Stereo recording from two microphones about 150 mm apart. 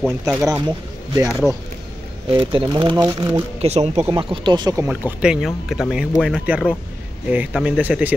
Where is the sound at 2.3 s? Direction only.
35° right (ahead or behind).